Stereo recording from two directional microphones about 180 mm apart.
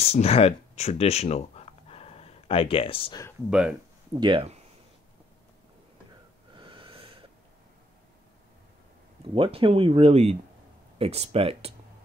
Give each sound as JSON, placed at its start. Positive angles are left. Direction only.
{"t": 0.0, "sound": "speech", "side_deg": 35}
{"t": 3.4, "sound": "speech", "side_deg": -5}
{"t": 4.1, "sound": "speech", "side_deg": -25}
{"t": 6.5, "sound": "snort", "side_deg": -30}
{"t": 9.3, "sound": "speech", "side_deg": -30}